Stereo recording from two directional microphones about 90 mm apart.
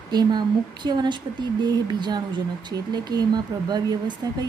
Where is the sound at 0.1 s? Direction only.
50° right (ahead or behind).